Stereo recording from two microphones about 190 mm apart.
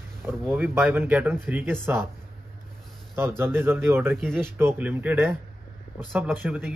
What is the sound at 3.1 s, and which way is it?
Speech, 10° right (ahead or behind).